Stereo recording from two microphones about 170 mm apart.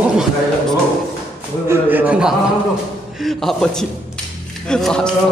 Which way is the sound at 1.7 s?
10° right (ahead or behind).